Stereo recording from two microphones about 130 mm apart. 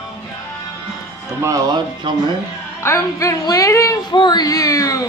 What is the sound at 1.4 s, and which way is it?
Speech, 30° right (ahead or behind).